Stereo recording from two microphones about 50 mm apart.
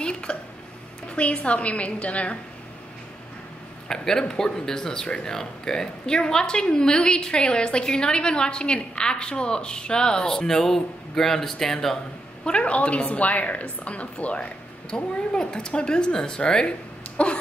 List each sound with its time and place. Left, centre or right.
0.0 s a sound: centre
1.0 s a woman's voice: left
3.9 s speech: centre
12.4 s a woman's voice: left
14.9 s a woman's voice: centre